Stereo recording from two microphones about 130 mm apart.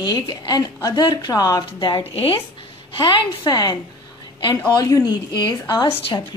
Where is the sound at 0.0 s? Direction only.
35° left (ahead or behind).